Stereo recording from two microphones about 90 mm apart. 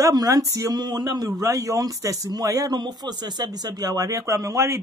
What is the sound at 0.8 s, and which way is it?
A man's voice, 50° right (ahead or behind).